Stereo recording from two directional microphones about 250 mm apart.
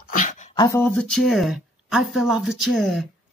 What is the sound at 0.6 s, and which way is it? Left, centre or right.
Speech, centre.